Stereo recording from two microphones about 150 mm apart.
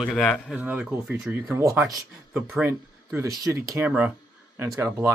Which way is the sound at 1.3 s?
20° right (ahead or behind).